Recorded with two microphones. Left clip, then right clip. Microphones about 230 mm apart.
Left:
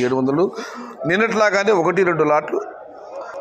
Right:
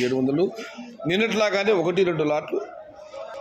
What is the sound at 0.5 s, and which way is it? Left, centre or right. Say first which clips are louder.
Speech: left 6 dB; centre.